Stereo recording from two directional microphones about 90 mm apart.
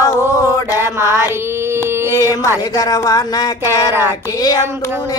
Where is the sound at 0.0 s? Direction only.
35° left (ahead or behind).